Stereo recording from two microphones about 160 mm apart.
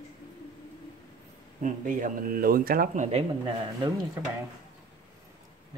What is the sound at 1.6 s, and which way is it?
Speech, 55° right (ahead or behind).